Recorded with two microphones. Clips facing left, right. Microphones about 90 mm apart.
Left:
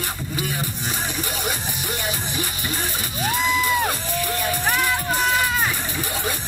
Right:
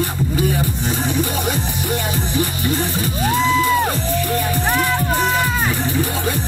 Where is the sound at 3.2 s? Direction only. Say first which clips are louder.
Right 5 dB; 20° right (ahead or behind).